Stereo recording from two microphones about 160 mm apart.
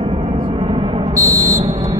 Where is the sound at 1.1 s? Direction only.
20° right (ahead or behind).